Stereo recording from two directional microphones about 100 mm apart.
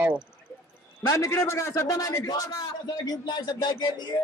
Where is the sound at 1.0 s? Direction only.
35° left (ahead or behind).